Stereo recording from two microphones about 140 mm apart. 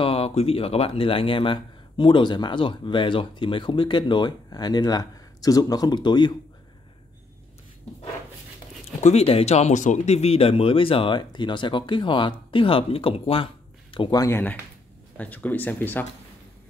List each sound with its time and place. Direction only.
0.0 s speech: 45° left (ahead or behind)
9.0 s speech: 45° left (ahead or behind)
14.2 s speech: 15° left (ahead or behind)